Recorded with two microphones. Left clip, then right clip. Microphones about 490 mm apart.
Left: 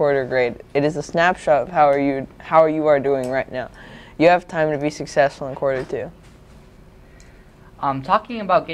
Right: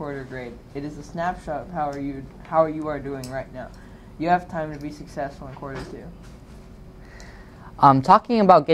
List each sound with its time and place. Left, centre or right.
0.0 s speech: left
7.8 s speech: right